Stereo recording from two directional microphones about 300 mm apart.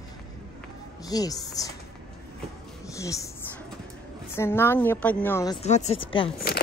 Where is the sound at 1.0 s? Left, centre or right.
Centre.